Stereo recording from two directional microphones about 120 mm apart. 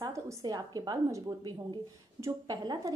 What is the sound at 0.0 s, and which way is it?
A woman's voice, 30° right (ahead or behind).